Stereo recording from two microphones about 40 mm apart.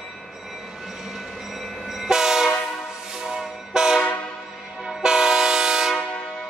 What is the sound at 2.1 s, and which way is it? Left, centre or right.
Train, centre.